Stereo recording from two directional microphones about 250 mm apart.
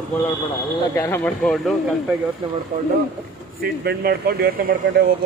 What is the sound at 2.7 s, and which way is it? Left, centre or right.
Speech, right.